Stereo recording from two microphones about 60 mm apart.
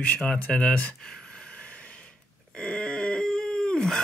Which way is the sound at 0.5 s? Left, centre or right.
Centre.